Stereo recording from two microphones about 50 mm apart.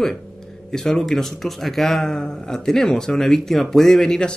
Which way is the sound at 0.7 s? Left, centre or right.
Centre.